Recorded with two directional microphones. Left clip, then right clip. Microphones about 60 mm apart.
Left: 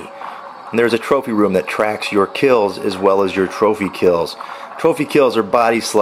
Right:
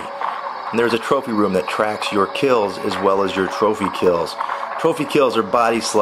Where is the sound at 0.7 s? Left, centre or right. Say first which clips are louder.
Left 3 dB; left.